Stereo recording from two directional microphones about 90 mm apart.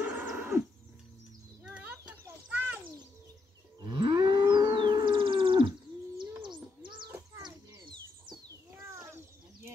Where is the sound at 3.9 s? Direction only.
60° right (ahead or behind).